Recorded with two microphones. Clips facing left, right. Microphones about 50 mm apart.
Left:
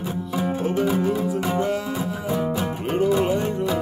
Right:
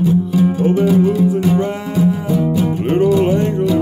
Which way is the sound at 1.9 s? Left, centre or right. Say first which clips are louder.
Right 9 dB; centre.